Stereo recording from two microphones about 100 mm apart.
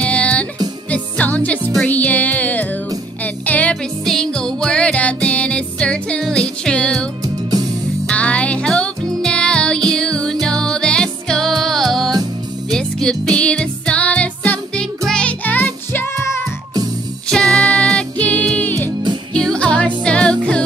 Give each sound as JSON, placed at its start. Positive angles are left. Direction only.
{"t": 0.0, "sound": "music", "side_deg": 15}
{"t": 4.0, "sound": "music", "side_deg": 5}
{"t": 8.1, "sound": "music", "side_deg": 10}
{"t": 12.1, "sound": "music", "side_deg": -40}
{"t": 12.7, "sound": "music", "side_deg": 5}
{"t": 17.3, "sound": "music", "side_deg": 5}